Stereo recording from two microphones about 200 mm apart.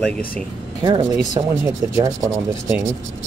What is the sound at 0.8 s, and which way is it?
Speech, 20° right (ahead or behind).